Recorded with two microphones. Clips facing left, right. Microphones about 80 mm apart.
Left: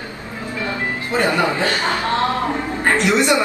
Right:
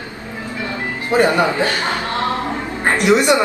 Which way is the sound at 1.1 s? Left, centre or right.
Right.